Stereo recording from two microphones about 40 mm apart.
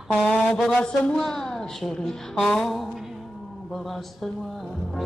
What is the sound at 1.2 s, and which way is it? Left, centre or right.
Speech, centre.